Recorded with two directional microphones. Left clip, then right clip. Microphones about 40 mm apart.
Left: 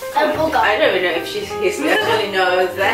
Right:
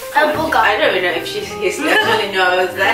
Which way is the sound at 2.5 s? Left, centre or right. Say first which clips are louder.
Right 1 dB; centre.